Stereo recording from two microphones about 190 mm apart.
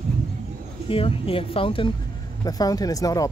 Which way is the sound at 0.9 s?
30° left (ahead or behind).